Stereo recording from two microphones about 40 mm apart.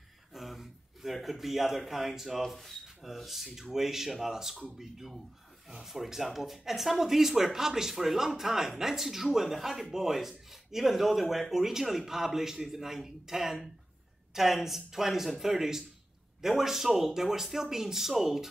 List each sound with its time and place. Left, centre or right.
0.3 s speech: centre